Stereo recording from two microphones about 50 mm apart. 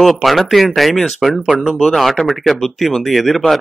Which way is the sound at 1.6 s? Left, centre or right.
Centre.